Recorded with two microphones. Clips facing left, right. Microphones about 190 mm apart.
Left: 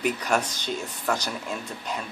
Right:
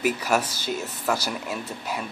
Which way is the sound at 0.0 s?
5° right (ahead or behind).